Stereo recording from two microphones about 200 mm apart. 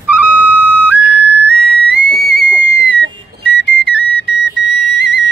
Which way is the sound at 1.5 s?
55° right (ahead or behind).